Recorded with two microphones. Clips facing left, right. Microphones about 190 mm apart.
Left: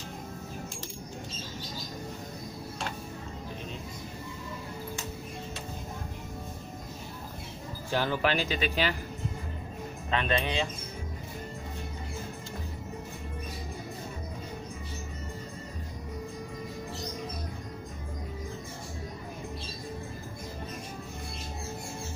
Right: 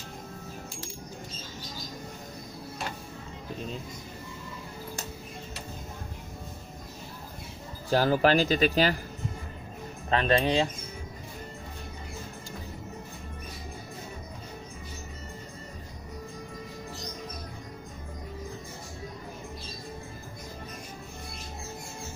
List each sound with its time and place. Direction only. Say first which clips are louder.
7.9 s speech: right 6 dB; 40° right (ahead or behind)
10.0 s speech: right 5 dB; 35° right (ahead or behind)